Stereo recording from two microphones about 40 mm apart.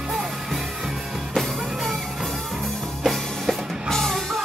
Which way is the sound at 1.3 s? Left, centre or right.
Centre.